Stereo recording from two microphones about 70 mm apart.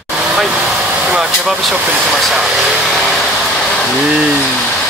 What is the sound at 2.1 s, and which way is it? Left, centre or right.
Speech, centre.